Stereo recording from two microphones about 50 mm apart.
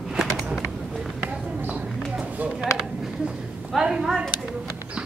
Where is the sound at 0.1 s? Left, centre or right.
Centre.